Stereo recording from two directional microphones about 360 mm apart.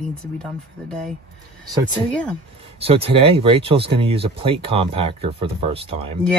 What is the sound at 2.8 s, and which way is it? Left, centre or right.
Speech, centre.